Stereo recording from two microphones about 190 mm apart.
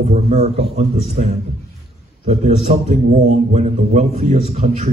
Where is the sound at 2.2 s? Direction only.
35° right (ahead or behind).